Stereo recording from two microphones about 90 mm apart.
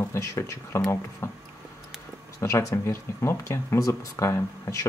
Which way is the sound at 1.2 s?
30° left (ahead or behind).